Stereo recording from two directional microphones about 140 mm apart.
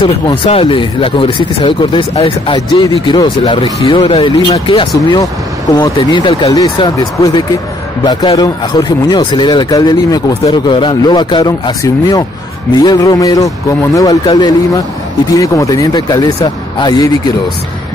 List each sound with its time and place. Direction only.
0.0 s speech: 40° left (ahead or behind)